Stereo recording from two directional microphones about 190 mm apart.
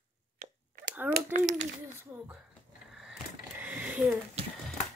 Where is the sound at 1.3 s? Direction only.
40° right (ahead or behind).